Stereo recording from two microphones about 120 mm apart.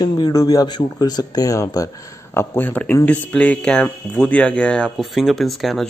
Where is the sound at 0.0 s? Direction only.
30° left (ahead or behind).